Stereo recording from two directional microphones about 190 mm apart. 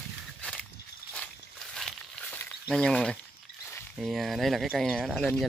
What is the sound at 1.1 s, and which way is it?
Walk, 5° left (ahead or behind).